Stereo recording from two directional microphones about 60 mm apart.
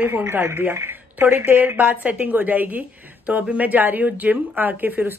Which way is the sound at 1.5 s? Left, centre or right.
Right.